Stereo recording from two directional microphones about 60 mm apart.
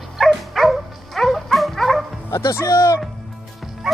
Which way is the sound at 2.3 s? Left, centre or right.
Left.